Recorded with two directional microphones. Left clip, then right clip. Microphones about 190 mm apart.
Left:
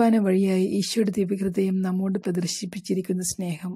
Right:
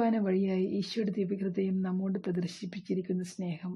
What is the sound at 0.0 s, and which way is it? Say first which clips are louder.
Speech: left 8 dB; 25° left (ahead or behind).